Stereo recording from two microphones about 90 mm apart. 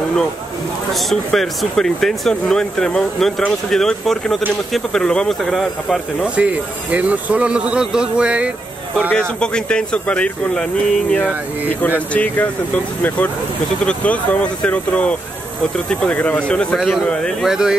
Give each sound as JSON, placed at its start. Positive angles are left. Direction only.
{"t": 0.9, "sound": "speech", "side_deg": 0}
{"t": 6.2, "sound": "speech", "side_deg": -15}
{"t": 9.4, "sound": "speech", "side_deg": 10}
{"t": 16.7, "sound": "speech", "side_deg": 0}
{"t": 17.5, "sound": "speech", "side_deg": -5}